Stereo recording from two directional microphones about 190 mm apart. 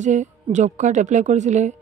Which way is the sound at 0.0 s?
40° right (ahead or behind).